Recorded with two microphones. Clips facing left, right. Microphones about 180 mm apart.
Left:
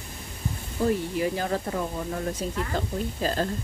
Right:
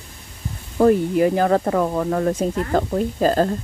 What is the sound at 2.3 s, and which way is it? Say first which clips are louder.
Speech: right 9 dB; 55° right (ahead or behind).